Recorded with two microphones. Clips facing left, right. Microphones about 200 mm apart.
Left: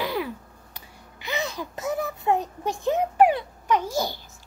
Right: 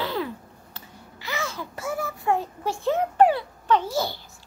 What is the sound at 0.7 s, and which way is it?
Babbling, 20° left (ahead or behind).